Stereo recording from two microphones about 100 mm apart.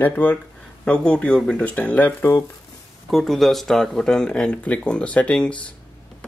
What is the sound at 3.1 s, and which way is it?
Speech, centre (ahead or behind).